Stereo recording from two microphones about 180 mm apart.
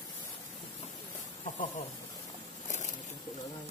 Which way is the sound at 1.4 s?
40° left (ahead or behind).